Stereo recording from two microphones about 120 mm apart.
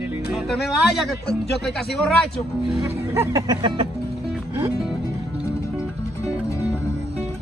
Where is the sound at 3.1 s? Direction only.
25° right (ahead or behind).